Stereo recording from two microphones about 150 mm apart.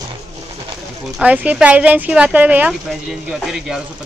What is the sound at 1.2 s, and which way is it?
Speech, 10° right (ahead or behind).